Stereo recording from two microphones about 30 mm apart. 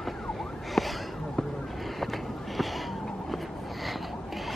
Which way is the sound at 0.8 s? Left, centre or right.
Centre.